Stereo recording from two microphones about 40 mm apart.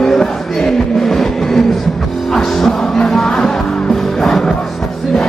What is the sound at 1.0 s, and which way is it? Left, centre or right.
Vehicle, centre.